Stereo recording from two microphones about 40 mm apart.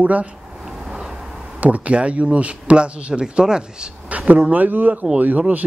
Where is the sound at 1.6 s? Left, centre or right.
Right; by 3.9 s centre.